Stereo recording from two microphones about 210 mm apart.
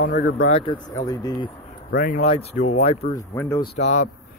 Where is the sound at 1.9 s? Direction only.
45° left (ahead or behind).